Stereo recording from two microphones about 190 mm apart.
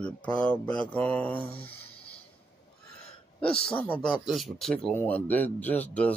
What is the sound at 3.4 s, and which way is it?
Speech, 30° left (ahead or behind).